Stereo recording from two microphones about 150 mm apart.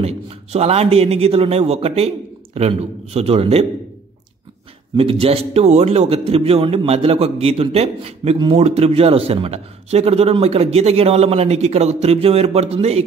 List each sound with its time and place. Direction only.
0.0 s a man's voice: 45° right (ahead or behind)
4.9 s a man's voice: 40° right (ahead or behind)